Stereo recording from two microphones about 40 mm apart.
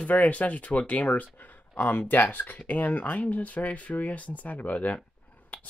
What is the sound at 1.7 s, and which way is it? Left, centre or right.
Speech, left.